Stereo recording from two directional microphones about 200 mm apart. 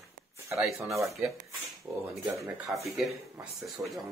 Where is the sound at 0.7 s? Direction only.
15° right (ahead or behind).